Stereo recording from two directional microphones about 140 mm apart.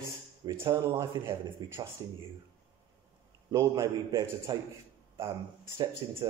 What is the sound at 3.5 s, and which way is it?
Speech, 20° right (ahead or behind).